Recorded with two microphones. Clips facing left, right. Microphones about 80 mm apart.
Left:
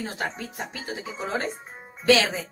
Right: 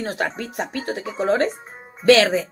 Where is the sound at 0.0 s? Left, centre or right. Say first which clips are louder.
Right 6 dB; right.